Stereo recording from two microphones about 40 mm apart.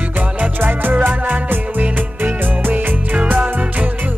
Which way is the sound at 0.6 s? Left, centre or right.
Right.